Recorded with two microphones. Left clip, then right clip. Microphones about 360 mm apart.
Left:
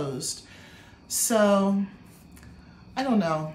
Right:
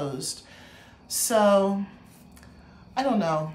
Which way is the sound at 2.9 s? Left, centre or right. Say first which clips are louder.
Right 1 dB; centre.